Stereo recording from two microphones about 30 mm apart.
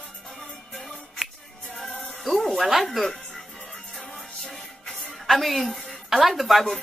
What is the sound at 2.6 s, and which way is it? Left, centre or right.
Speech, centre.